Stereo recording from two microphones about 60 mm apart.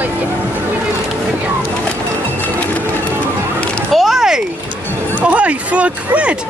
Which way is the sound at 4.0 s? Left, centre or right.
Centre.